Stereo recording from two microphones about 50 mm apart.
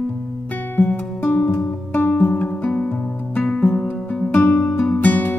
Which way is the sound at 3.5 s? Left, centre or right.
Centre.